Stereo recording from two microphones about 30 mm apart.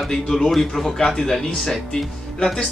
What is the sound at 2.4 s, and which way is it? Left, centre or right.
Speech, centre.